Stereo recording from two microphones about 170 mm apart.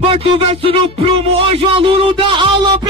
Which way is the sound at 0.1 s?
35° right (ahead or behind).